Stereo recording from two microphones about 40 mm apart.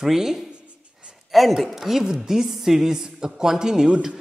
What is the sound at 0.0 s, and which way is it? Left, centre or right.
A woman's voice, centre.